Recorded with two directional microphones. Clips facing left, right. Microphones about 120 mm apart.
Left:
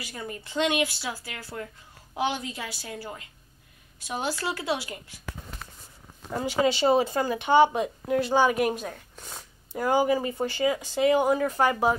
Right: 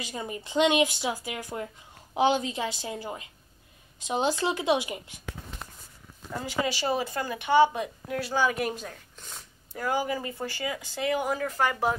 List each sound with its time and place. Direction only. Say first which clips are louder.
0.0 s a woman's voice: right 2 dB; 20° right (ahead or behind)
6.5 s speech: left 6 dB; 25° left (ahead or behind)